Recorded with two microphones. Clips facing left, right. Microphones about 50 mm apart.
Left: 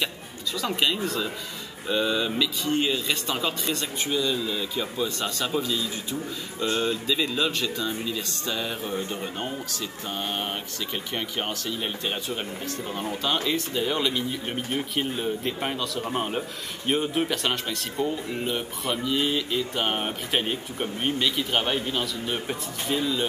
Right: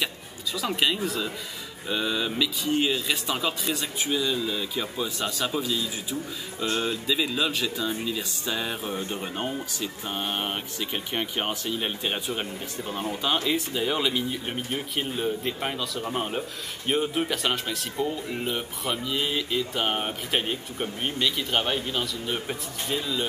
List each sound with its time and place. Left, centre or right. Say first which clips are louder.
0.6 s speech: even; centre